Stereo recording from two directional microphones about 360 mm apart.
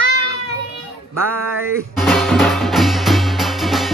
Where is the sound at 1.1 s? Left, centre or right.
Right.